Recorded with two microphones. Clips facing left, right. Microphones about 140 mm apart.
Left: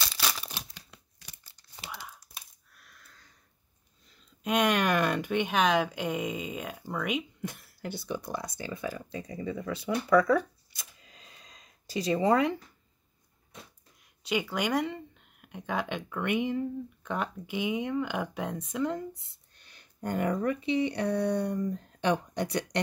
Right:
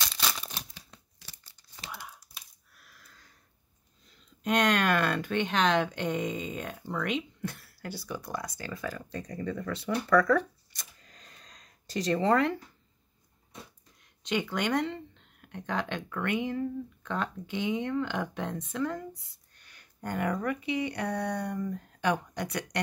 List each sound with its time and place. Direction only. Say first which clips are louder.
0.0 s crumpling: even; centre (ahead or behind)
1.9 s a sound: even; centre (ahead or behind)
4.4 s speech: even; 5° left (ahead or behind)
14.2 s speech: even; 5° left (ahead or behind)
18.9 s speech: left 2 dB; 25° left (ahead or behind)